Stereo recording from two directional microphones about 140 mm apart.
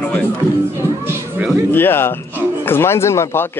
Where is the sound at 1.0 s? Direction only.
15° right (ahead or behind).